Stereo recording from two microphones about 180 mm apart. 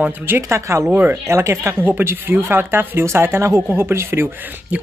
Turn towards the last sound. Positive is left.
turn(degrees=-10)  # may be behind; listen again after turning